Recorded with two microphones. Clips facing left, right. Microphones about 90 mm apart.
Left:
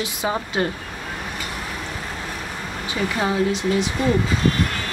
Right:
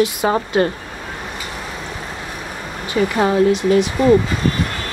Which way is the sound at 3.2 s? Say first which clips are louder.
Right 6 dB; 55° right (ahead or behind).